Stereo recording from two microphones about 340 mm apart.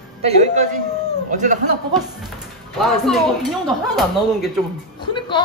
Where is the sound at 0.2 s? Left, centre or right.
Centre.